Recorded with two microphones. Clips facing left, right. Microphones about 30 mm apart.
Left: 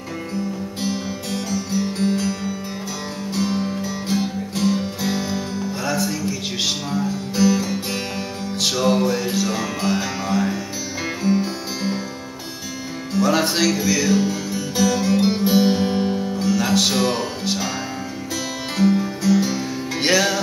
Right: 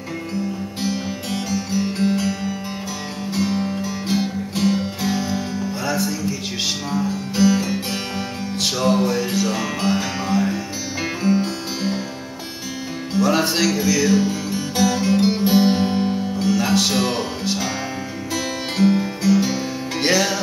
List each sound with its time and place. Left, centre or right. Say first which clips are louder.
0.8 s music: right 1 dB; centre
5.0 s music: right 1 dB; centre
5.6 s music: left 1 dB; centre
7.3 s music: right 1 dB; centre
8.5 s music: even; centre
13.2 s music: even; centre
18.9 s music: even; right
19.3 s music: even; centre
20.1 s music: left 1 dB; centre